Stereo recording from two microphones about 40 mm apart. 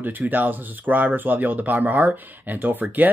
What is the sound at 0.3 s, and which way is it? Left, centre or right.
Speech, right.